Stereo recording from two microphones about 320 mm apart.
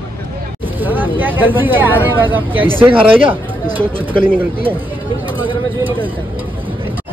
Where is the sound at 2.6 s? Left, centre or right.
Centre.